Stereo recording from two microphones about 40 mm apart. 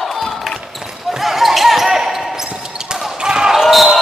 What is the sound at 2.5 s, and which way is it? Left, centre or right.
Basketball bounce, centre.